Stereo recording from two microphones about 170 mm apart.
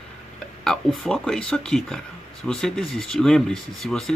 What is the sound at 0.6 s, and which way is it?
Speech, 5° left (ahead or behind).